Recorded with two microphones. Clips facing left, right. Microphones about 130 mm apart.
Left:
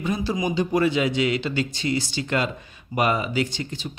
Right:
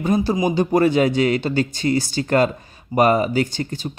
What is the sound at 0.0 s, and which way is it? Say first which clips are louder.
A man's voice: right 6 dB; 45° right (ahead or behind).